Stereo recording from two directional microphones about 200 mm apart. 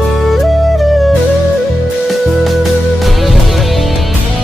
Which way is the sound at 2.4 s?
Centre (ahead or behind).